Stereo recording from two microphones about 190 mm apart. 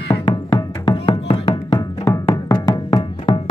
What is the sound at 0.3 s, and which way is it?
Music, 20° left (ahead or behind).